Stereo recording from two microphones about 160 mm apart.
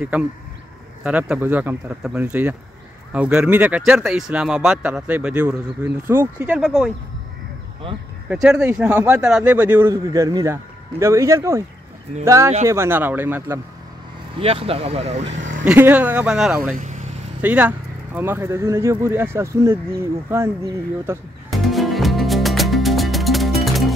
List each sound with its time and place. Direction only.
0.0 s speech: 10° right (ahead or behind)
8.3 s speech: 5° right (ahead or behind)
14.4 s speech: 35° right (ahead or behind)
15.6 s speech: 10° right (ahead or behind)
16.7 s speech: 50° right (ahead or behind)
17.4 s speech: 10° right (ahead or behind)
21.5 s music: centre (ahead or behind)